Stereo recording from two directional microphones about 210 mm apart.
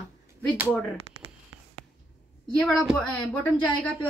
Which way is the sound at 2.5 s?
5° left (ahead or behind).